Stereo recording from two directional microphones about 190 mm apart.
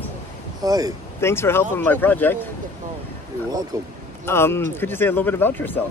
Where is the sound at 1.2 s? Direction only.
15° left (ahead or behind).